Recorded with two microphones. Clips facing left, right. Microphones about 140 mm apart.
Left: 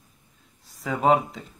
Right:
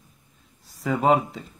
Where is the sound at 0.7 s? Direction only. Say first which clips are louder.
Right 1 dB; centre (ahead or behind).